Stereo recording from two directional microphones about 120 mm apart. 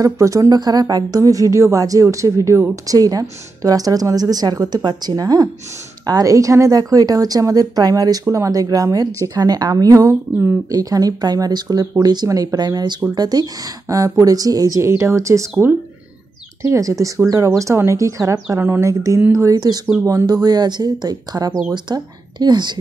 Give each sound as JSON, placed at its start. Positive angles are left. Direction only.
{"t": 0.0, "sound": "a woman's voice", "side_deg": -25}